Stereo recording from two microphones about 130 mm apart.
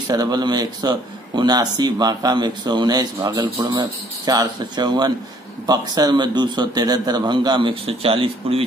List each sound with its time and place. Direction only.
0.1 s speech: 30° right (ahead or behind); by 8.6 s 45° right (ahead or behind)